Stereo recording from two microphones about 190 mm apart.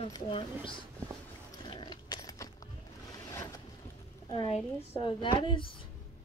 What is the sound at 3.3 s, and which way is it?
Boat, 15° left (ahead or behind).